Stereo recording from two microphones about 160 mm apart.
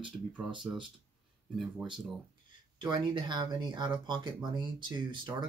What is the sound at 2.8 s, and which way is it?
Speech, 30° right (ahead or behind).